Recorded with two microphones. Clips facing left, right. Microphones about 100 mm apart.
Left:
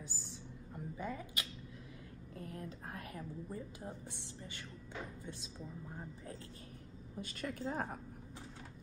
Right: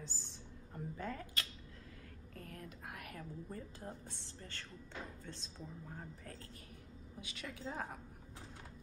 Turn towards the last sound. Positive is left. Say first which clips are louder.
# left 5 dB
turn(degrees=45)  # may be behind; listen again after turning